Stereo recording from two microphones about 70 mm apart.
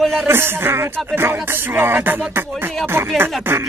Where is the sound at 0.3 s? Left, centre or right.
Right.